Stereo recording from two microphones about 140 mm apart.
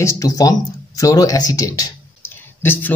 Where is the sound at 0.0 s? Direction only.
25° left (ahead or behind).